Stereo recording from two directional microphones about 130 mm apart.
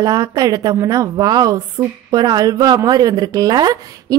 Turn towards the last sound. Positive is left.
turn(degrees=-30)  # may be behind; listen again after turning